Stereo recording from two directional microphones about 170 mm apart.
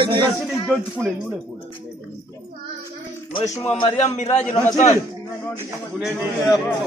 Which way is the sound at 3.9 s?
40° left (ahead or behind).